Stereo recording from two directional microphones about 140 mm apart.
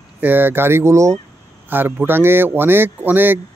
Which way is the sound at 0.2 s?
15° right (ahead or behind).